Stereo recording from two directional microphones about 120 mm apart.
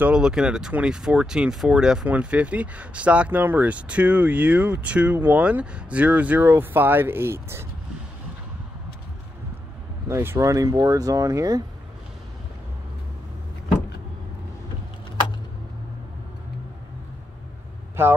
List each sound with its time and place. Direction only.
0.0 s speech: 5° right (ahead or behind)
10.0 s speech: 20° right (ahead or behind)
18.0 s speech: 20° right (ahead or behind)